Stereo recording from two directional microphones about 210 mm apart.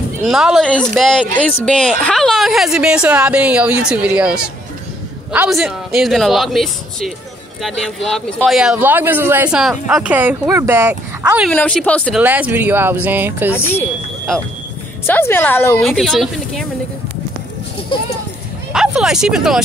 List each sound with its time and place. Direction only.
0.2 s a woman's voice: centre (ahead or behind)
11.5 s a woman's voice: 5° left (ahead or behind)
12.2 s speech: 10° right (ahead or behind)
13.5 s a woman's voice: 10° left (ahead or behind)
14.3 s a woman's voice: centre (ahead or behind)
15.0 s a woman's voice: 10° left (ahead or behind)
17.9 s speech: 25° left (ahead or behind)
18.7 s a sound: centre (ahead or behind)